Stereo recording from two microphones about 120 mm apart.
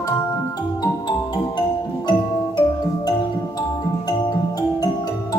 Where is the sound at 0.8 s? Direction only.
35° left (ahead or behind).